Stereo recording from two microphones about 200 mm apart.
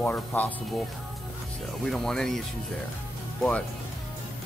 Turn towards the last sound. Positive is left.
turn(degrees=5)  # may be behind; listen again after turning